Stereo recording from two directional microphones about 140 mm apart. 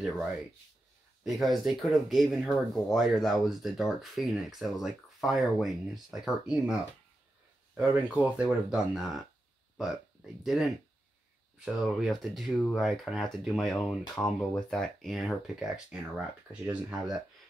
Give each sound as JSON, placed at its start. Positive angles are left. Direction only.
{"t": 1.2, "sound": "speech", "side_deg": 0}
{"t": 10.4, "sound": "speech", "side_deg": 0}